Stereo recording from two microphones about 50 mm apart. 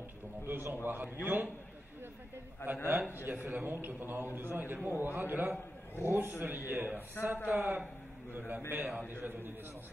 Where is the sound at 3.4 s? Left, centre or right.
Right.